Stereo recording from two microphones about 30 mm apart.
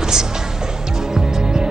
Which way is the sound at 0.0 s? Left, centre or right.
Right.